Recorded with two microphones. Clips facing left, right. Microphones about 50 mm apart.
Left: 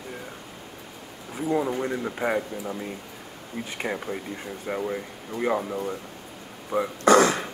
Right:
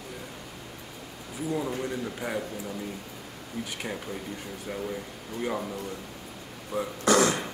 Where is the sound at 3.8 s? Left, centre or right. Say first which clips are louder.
Left 5 dB; left.